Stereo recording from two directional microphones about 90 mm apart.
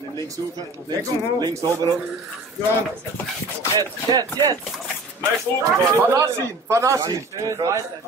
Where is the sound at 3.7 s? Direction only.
45° right (ahead or behind).